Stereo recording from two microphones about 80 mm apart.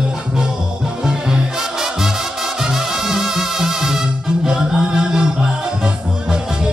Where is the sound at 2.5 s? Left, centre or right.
Centre.